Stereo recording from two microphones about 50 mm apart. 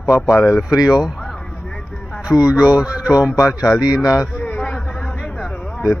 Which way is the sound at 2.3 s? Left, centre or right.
Centre.